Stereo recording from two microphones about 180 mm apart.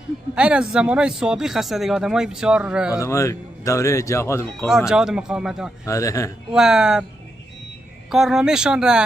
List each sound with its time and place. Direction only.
0.3 s speech: 5° right (ahead or behind)
3.0 s speech: 15° left (ahead or behind)
4.6 s speech: 5° right (ahead or behind)
5.9 s speech: 15° left (ahead or behind)
6.5 s speech: 5° right (ahead or behind)
8.1 s speech: centre (ahead or behind)